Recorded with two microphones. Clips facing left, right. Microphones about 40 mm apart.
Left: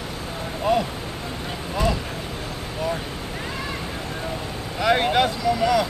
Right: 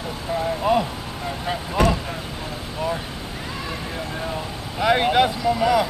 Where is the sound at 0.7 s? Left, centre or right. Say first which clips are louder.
Right 1 dB; centre.